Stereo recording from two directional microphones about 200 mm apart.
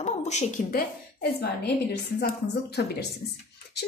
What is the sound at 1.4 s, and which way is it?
Speech, 55° left (ahead or behind).